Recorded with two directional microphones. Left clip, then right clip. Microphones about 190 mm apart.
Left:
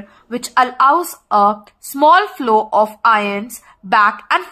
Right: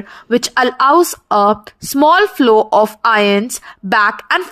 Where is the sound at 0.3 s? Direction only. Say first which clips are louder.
Right 2 dB; 35° right (ahead or behind).